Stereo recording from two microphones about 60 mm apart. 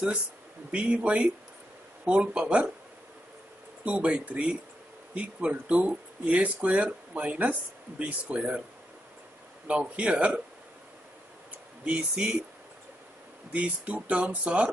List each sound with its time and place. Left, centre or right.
0.7 s speech: centre
3.8 s speech: right
9.7 s speech: right
11.8 s speech: centre
13.5 s speech: right